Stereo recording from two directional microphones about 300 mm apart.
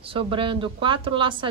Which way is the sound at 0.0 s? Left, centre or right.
Centre.